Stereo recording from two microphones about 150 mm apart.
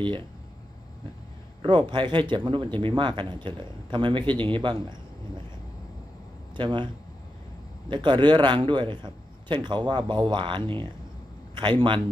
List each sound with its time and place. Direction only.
0.0 s a man's voice: 35° right (ahead or behind)
1.6 s a man's voice: 30° right (ahead or behind)
6.5 s speech: 30° right (ahead or behind)
7.9 s a man's voice: 30° right (ahead or behind)